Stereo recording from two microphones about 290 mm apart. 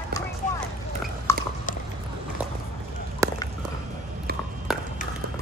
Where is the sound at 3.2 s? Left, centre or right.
Centre.